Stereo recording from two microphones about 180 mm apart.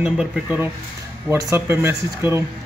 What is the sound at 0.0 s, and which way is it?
A man's voice, 5° right (ahead or behind).